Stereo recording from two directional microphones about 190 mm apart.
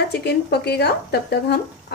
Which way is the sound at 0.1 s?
60° left (ahead or behind).